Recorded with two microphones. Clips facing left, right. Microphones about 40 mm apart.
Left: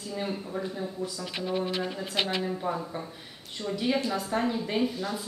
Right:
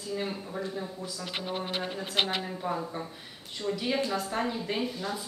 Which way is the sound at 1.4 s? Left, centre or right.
Right.